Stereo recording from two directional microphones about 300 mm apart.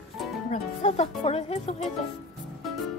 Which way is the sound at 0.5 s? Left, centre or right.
Left.